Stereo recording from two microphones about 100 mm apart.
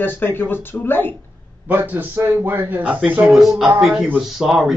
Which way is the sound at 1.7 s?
15° right (ahead or behind).